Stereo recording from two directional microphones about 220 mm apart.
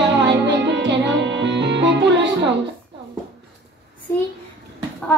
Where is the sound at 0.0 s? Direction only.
50° right (ahead or behind).